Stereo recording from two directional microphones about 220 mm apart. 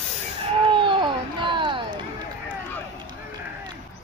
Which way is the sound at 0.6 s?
20° right (ahead or behind).